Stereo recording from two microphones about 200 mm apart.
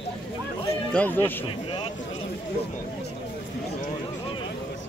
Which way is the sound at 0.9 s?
10° left (ahead or behind).